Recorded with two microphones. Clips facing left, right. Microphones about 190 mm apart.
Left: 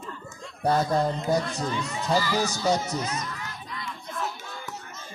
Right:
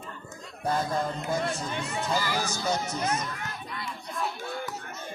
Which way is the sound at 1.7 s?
55° right (ahead or behind).